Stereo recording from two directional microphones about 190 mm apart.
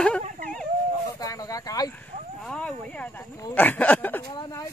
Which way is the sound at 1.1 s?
20° left (ahead or behind).